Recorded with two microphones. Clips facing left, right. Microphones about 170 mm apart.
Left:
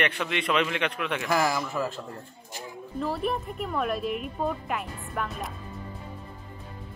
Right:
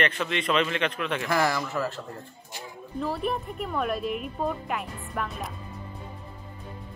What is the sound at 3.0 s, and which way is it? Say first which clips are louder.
A woman's voice: even; centre (ahead or behind).